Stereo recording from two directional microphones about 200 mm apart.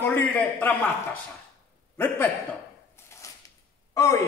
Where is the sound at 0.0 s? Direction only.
10° left (ahead or behind).